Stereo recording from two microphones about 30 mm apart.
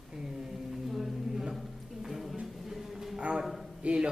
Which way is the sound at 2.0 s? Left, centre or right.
Centre.